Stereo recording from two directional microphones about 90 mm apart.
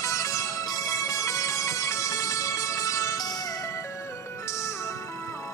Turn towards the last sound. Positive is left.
turn(degrees=45)  # may be behind; listen again after turning